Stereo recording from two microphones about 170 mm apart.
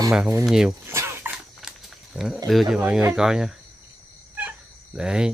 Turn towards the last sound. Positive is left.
turn(degrees=-5)  # may be behind; listen again after turning